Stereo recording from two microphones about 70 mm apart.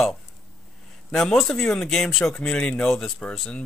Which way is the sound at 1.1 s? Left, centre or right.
Centre.